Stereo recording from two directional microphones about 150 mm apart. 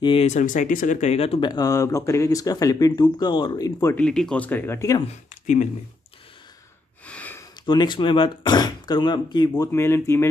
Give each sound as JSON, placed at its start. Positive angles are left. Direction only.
{"t": 0.0, "sound": "speech", "side_deg": 35}
{"t": 0.3, "sound": "speech", "side_deg": 55}
{"t": 1.5, "sound": "speech", "side_deg": 25}
{"t": 3.9, "sound": "speech", "side_deg": 5}
{"t": 7.1, "sound": "a sound", "side_deg": 10}
{"t": 7.6, "sound": "speech", "side_deg": 30}